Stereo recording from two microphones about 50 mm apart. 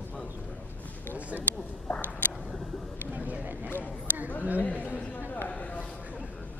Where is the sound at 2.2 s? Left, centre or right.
Left.